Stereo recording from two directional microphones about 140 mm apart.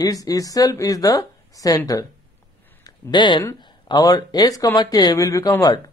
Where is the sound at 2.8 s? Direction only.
35° left (ahead or behind).